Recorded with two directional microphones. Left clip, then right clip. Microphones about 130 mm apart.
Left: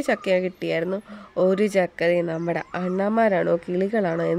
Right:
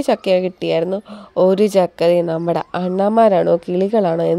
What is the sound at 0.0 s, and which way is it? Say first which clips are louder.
A woman's voice: right 6 dB; 30° right (ahead or behind).